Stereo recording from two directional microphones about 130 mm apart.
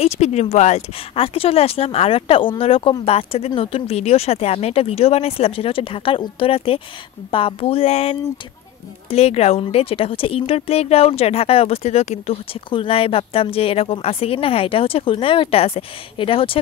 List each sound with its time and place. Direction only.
0.0 s speech: 55° left (ahead or behind)
1.1 s speech: 45° left (ahead or behind)